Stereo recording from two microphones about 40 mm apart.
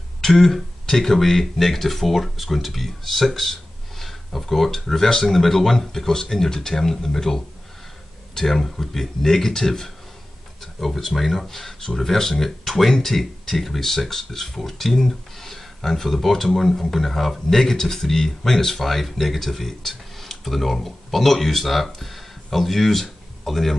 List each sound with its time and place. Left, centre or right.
0.2 s speech: centre